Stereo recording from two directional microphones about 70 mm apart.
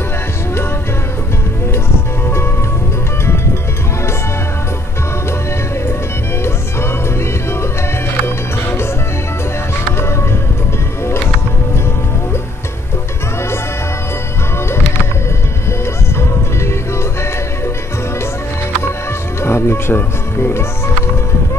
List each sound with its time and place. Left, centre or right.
15.8 s music: left
19.4 s music: left